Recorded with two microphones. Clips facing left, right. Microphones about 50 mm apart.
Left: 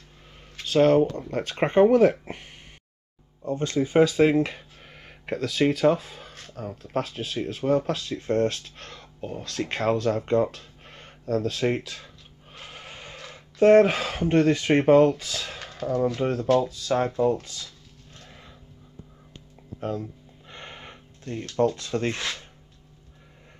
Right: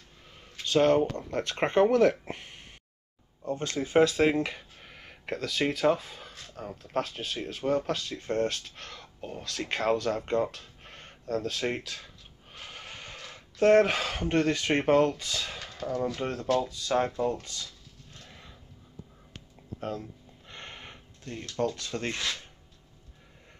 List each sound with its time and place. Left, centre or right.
0.7 s speech: centre
10.4 s speech: centre
12.6 s a sound: centre
13.3 s speech: centre
15.6 s a sound: left
16.2 s speech: centre
16.6 s speech: centre
17.2 s speech: centre
19.8 s a sound: centre
21.2 s a sound: left
21.5 s speech: left
21.7 s speech: left